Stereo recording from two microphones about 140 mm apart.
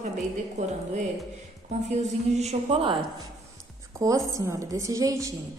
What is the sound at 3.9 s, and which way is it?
A woman's voice, 20° right (ahead or behind).